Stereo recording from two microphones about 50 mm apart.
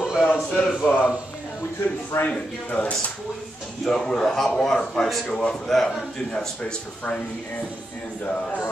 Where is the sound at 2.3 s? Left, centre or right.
Left.